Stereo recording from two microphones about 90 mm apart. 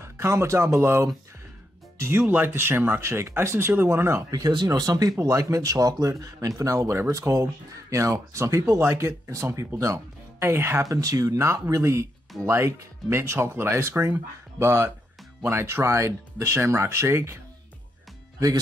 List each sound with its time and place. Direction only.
0.0 s speech: 30° right (ahead or behind)
4.3 s speech: 50° right (ahead or behind); by 10.8 s 30° right (ahead or behind)
10.8 s speech: 40° right (ahead or behind)